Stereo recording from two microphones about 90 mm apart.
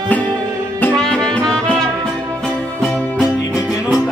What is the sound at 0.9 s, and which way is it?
Music, 5° left (ahead or behind).